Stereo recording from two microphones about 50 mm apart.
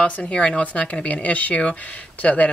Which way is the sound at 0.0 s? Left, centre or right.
Left.